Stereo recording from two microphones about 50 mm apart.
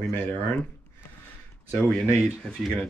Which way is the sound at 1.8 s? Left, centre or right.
Centre.